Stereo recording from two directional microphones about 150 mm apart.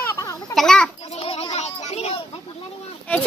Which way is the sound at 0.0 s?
20° left (ahead or behind).